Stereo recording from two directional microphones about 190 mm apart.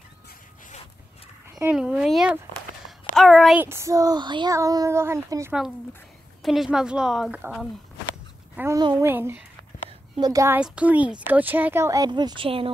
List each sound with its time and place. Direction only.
1.5 s speech: 10° right (ahead or behind)
3.2 s a sound: centre (ahead or behind)
3.6 s speech: 15° right (ahead or behind)
6.4 s speech: centre (ahead or behind); by 9.1 s 20° right (ahead or behind)
9.1 s speech: 10° right (ahead or behind); by 12.7 s 30° right (ahead or behind)